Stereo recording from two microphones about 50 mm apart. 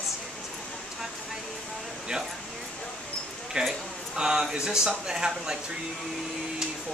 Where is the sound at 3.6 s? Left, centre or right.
Centre.